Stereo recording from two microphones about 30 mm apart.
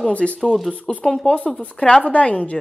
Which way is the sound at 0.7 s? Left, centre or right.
Centre.